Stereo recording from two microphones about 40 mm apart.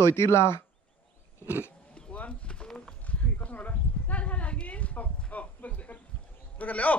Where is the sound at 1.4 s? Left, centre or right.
Right.